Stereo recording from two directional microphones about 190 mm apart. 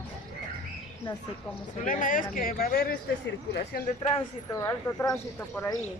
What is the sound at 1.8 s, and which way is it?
Speech, 45° left (ahead or behind).